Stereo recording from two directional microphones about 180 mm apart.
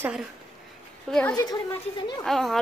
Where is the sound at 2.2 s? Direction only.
Centre (ahead or behind).